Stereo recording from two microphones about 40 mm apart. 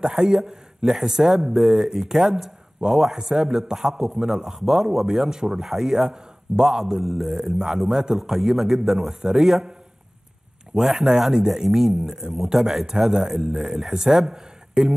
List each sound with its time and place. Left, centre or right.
0.0 s a man's voice: centre
4.5 s a man's voice: centre
10.8 s a man's voice: centre